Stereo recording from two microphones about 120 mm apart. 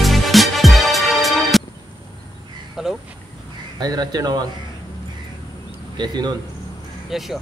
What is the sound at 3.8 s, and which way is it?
Speech, 35° right (ahead or behind).